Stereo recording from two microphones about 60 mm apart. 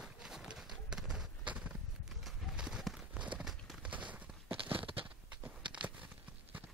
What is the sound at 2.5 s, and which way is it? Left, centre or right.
Clip-clop, centre.